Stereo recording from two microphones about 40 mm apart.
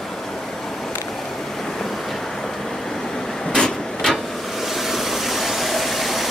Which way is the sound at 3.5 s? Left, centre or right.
Centre.